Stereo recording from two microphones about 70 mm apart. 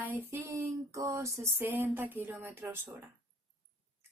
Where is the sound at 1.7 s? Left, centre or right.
Right.